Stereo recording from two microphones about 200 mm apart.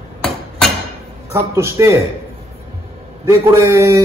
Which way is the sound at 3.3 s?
15° right (ahead or behind).